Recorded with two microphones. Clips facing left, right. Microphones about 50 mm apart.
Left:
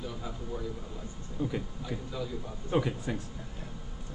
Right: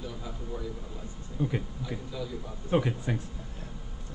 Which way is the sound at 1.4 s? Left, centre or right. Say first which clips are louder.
Right 2 dB; centre.